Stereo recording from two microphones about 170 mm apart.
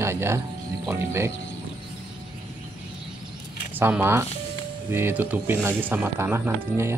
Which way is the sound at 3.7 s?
10° right (ahead or behind).